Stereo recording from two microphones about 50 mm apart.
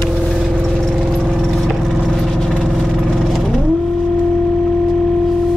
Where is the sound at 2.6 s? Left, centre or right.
Centre.